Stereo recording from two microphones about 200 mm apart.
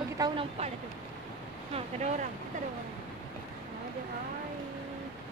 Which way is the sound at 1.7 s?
35° right (ahead or behind).